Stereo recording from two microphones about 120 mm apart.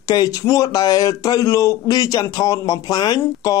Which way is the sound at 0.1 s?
30° left (ahead or behind).